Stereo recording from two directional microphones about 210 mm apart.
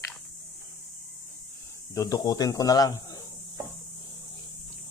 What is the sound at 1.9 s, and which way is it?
Speech, 15° left (ahead or behind).